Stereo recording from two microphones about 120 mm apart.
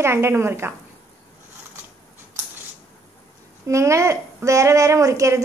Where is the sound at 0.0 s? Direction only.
20° right (ahead or behind).